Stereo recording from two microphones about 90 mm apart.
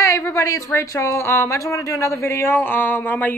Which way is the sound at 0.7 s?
35° left (ahead or behind).